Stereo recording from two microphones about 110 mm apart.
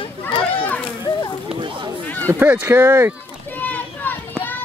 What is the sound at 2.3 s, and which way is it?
Speech, 15° right (ahead or behind).